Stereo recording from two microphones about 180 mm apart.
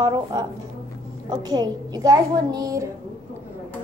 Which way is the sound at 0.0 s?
20° right (ahead or behind).